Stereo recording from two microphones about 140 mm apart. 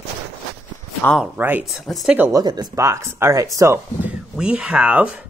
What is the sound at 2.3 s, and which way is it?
Speech, 30° right (ahead or behind).